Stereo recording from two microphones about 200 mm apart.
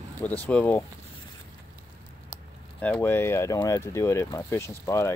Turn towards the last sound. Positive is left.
turn(degrees=15)  # may be behind; listen again after turning